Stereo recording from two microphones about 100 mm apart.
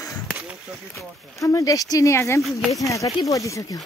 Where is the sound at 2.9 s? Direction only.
35° left (ahead or behind).